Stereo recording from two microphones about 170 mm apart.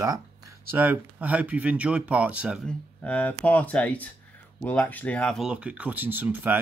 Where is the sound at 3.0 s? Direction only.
10° left (ahead or behind).